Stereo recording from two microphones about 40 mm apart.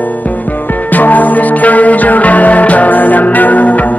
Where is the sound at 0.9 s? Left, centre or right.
Left.